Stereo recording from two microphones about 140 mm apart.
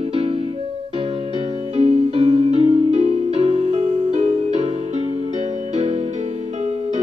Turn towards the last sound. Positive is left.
turn(degrees=-55)  # may be behind; listen again after turning